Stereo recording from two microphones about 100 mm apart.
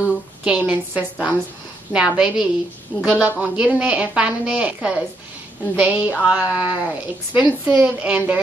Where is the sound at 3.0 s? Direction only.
10° right (ahead or behind).